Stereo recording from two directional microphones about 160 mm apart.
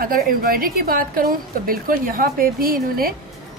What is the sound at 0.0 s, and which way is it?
A woman's voice, 65° right (ahead or behind).